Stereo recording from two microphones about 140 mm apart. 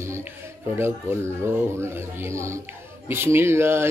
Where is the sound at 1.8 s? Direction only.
20° right (ahead or behind).